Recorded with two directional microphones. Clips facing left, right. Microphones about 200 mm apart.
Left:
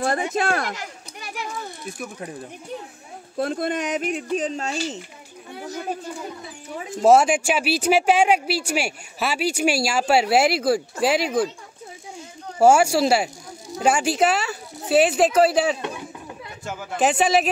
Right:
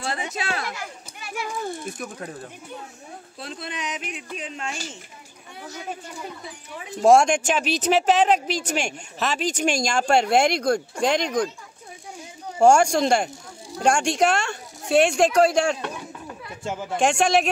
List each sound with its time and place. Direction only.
0.0 s speech: 50° left (ahead or behind)
2.0 s speech: 10° left (ahead or behind)
3.3 s speech: 50° left (ahead or behind)
7.0 s speech: 5° left (ahead or behind)
12.5 s speech: 5° left (ahead or behind)
16.6 s speech: 25° right (ahead or behind)
17.0 s speech: 5° left (ahead or behind)